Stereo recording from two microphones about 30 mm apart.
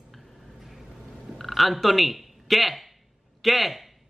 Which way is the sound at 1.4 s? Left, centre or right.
Centre.